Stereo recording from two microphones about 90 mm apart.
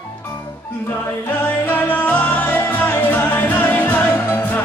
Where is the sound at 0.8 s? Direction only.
20° left (ahead or behind).